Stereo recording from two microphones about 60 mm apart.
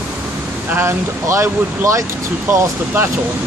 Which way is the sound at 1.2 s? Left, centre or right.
Right.